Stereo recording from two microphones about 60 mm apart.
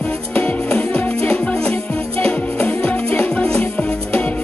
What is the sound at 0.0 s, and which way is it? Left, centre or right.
Music, left.